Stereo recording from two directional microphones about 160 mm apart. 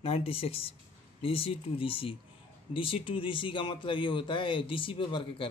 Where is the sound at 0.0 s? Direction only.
35° left (ahead or behind).